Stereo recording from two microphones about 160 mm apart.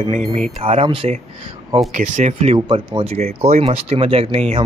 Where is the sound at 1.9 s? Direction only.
50° right (ahead or behind).